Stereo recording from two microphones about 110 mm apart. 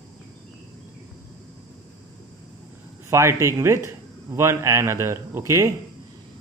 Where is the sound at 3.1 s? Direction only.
25° right (ahead or behind).